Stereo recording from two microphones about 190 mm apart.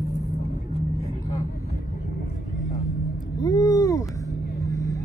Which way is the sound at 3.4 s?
20° left (ahead or behind).